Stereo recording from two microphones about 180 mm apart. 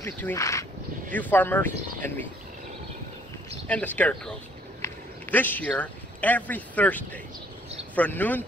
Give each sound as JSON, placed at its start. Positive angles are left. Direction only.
{"t": 0.0, "sound": "speech", "side_deg": 15}
{"t": 3.6, "sound": "speech", "side_deg": 10}